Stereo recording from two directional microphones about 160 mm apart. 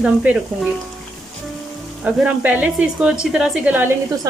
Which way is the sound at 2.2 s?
10° right (ahead or behind).